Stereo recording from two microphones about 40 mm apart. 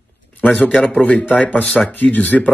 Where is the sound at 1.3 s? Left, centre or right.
Left.